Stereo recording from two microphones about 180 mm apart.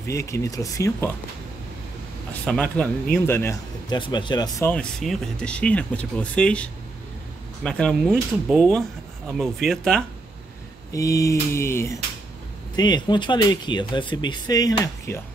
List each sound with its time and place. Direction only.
0.1 s speech: 15° left (ahead or behind)
2.4 s speech: 5° left (ahead or behind)
3.9 s speech: 25° left (ahead or behind)
4.6 s speech: 5° left (ahead or behind)
10.9 s speech: 20° left (ahead or behind)